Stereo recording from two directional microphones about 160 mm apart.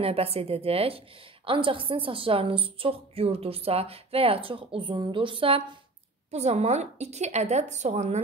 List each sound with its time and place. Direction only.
0.0 s a woman's voice: 35° right (ahead or behind)
6.3 s a woman's voice: 45° right (ahead or behind)